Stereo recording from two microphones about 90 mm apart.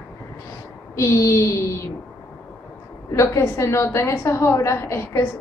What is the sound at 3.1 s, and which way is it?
A woman's voice, 35° left (ahead or behind).